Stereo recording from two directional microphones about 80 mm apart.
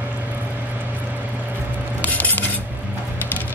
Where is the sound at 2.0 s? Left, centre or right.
Left.